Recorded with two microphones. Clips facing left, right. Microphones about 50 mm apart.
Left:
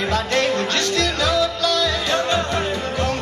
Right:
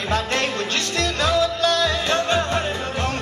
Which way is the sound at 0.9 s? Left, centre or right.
Right.